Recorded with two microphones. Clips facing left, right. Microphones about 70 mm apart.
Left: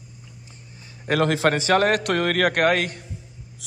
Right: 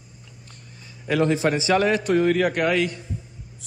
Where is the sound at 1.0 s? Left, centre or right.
Left.